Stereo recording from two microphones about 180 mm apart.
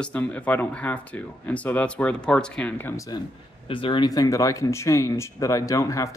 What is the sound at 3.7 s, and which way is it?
Speech, 30° left (ahead or behind).